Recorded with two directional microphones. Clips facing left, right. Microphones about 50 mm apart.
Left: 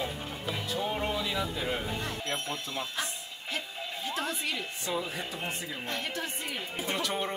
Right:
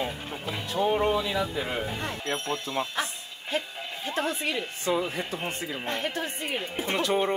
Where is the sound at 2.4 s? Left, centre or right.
Right.